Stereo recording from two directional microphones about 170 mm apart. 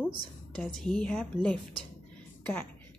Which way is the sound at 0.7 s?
5° left (ahead or behind).